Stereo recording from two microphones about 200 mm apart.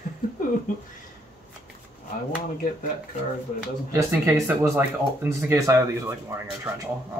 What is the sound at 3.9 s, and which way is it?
Speech, 15° right (ahead or behind).